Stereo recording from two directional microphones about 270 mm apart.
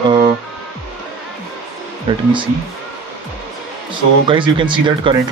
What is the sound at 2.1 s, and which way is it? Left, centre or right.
Speech, centre.